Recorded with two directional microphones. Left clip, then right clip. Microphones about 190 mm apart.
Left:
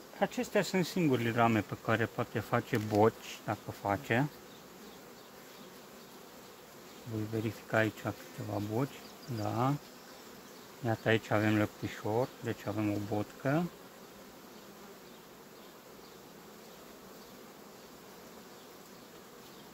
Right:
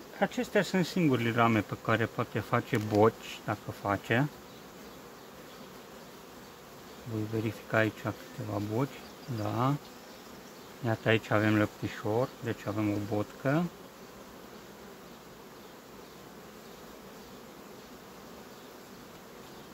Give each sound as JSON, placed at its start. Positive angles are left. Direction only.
{"t": 0.2, "sound": "speech", "side_deg": 15}
{"t": 7.4, "sound": "bee", "side_deg": 20}
{"t": 10.9, "sound": "speech", "side_deg": 20}